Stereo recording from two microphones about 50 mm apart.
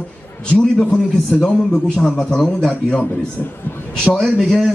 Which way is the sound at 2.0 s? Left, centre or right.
Centre.